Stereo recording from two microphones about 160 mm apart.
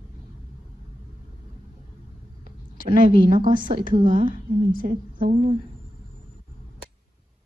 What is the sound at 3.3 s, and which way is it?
A woman's voice, 60° right (ahead or behind).